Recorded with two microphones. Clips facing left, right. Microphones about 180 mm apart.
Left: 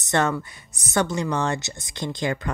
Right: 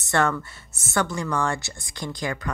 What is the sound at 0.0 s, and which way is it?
Speech, 20° left (ahead or behind).